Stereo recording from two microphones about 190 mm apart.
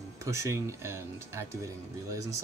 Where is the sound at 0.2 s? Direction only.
15° right (ahead or behind).